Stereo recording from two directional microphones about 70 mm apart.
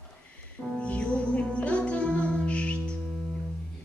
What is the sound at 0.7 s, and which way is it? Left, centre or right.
Music, centre.